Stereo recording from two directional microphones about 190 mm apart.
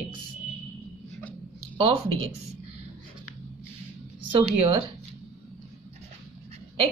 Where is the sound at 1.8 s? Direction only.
30° right (ahead or behind).